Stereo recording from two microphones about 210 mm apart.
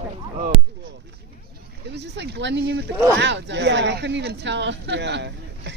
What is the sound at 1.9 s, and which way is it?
Speech, 55° right (ahead or behind).